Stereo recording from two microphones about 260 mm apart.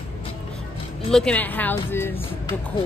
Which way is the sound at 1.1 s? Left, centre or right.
Centre.